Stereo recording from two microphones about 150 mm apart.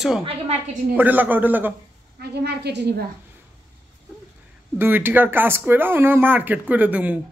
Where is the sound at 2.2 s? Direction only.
90° right.